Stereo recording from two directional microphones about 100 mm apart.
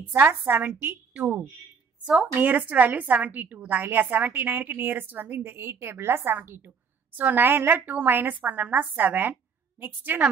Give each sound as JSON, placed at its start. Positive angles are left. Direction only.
{"t": 0.1, "sound": "a woman's voice", "side_deg": -20}
{"t": 2.3, "sound": "a woman's voice", "side_deg": -15}